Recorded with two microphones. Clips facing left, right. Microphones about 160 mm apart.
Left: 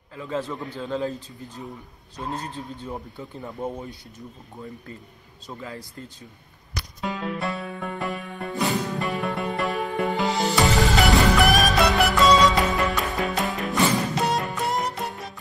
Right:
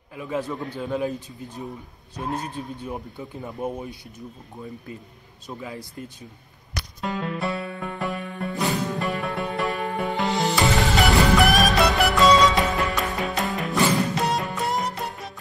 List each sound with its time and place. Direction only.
0.1 s speech: 15° right (ahead or behind)
2.3 s speech: 15° right (ahead or behind)
5.5 s speech: 15° right (ahead or behind)
7.0 s music: centre (ahead or behind)